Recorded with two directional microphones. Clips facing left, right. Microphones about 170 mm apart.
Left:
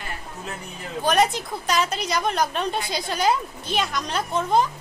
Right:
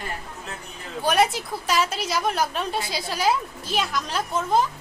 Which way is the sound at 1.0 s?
5° right (ahead or behind).